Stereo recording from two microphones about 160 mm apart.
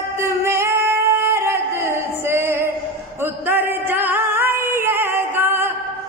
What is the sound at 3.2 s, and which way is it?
Music, 15° right (ahead or behind).